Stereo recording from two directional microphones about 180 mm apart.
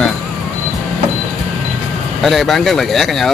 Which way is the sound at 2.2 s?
Centre (ahead or behind).